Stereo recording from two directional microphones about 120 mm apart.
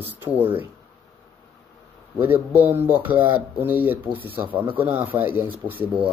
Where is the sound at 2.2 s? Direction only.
15° right (ahead or behind).